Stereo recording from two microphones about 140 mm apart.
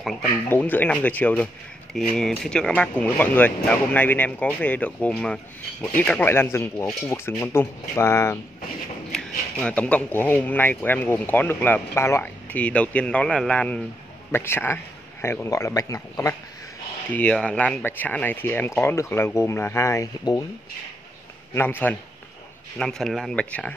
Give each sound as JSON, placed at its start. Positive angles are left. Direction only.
{"t": 0.5, "sound": "speech", "side_deg": 10}
{"t": 9.1, "sound": "speech", "side_deg": 10}
{"t": 17.1, "sound": "speech", "side_deg": 10}
{"t": 21.5, "sound": "speech", "side_deg": 15}
{"t": 22.8, "sound": "speech", "side_deg": 5}